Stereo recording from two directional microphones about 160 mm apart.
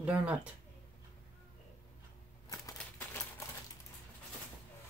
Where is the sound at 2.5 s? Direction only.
20° left (ahead or behind).